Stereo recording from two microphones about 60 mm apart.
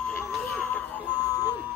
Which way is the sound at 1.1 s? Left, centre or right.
Right.